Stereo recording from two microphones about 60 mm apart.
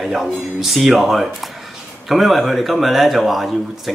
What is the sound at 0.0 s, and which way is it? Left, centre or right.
Speech, centre.